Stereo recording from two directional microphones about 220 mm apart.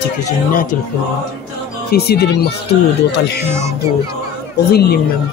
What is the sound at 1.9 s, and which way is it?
Speech, 45° left (ahead or behind).